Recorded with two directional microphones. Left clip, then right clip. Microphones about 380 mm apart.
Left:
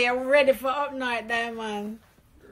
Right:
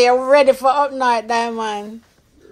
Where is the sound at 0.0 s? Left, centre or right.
Centre.